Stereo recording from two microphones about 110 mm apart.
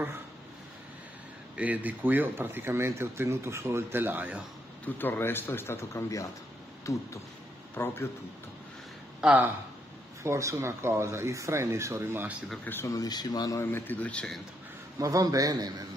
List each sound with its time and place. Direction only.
1.6 s speech: 15° right (ahead or behind)
4.8 s speech: 20° left (ahead or behind)
7.7 s speech: 20° left (ahead or behind)
9.2 s speech: 15° right (ahead or behind)
10.2 s speech: 25° right (ahead or behind)
12.8 s speech: 35° left (ahead or behind)
13.6 s speech: 20° left (ahead or behind)
15.0 s a man's voice: 30° right (ahead or behind)